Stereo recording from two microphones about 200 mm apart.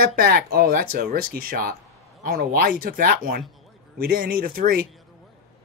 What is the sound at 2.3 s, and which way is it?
Speech, 45° right (ahead or behind).